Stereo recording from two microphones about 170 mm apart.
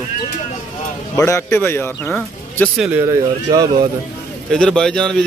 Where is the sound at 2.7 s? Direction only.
5° right (ahead or behind).